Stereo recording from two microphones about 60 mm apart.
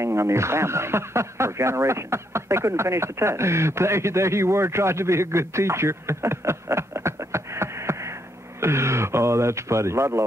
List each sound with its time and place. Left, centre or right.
0.0 s speech: right